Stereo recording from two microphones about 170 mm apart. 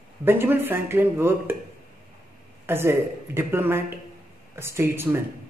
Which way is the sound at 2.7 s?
15° right (ahead or behind).